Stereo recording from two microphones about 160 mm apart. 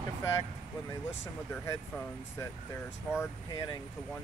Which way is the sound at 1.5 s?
20° left (ahead or behind).